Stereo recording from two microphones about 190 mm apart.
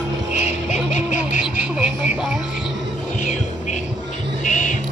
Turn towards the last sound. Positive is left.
turn(degrees=40)  # may be behind; listen again after turning